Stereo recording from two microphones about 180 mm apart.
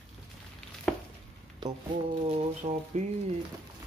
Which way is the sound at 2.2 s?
40° right (ahead or behind).